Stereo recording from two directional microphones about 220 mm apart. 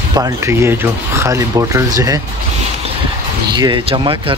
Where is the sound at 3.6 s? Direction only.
25° right (ahead or behind).